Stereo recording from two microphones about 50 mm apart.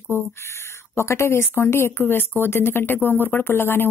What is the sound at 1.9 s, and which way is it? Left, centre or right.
Speech, left.